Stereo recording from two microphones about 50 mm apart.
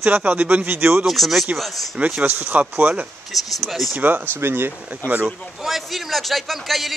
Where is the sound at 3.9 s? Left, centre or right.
Right.